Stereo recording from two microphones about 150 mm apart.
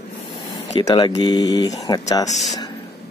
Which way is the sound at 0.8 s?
25° left (ahead or behind).